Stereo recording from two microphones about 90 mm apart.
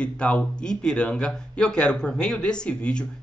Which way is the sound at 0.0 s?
10° left (ahead or behind).